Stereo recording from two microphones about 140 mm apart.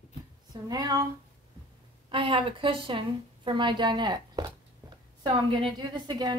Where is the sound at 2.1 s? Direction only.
35° right (ahead or behind).